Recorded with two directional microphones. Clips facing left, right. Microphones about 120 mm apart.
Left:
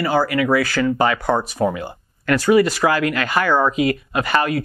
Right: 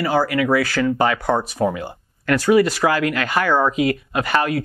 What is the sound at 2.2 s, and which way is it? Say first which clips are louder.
Speech: even; 5° right (ahead or behind).